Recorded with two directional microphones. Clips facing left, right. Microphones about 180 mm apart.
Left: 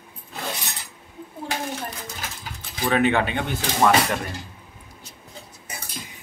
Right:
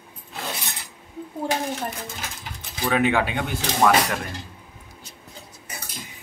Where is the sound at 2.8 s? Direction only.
5° right (ahead or behind).